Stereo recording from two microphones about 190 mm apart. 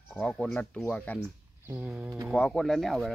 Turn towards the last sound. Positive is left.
turn(degrees=0)  # may be behind; listen again after turning